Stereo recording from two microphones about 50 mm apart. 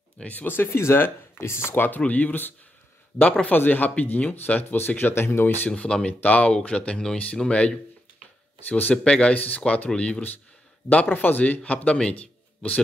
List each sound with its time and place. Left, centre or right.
0.2 s speech: left
0.6 s speech: left
0.9 s speech: left
1.9 s speech: left
5.7 s speech: centre
10.9 s speech: left